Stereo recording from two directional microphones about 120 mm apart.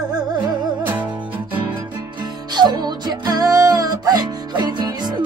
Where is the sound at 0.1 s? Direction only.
35° right (ahead or behind).